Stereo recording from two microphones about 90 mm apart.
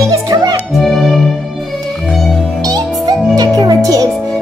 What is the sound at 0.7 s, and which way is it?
Music, centre (ahead or behind).